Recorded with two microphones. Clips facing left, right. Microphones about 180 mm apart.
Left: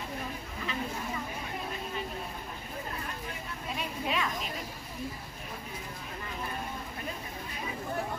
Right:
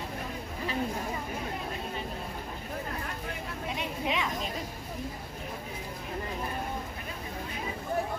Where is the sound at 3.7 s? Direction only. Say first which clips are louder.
Right 1 dB; 20° right (ahead or behind).